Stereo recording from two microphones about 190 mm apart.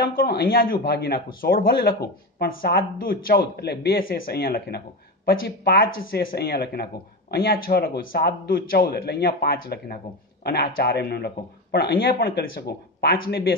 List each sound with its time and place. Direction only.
0.0 s a man's voice: 50° left (ahead or behind)